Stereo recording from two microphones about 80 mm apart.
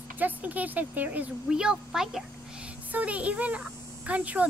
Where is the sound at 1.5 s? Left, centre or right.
Centre.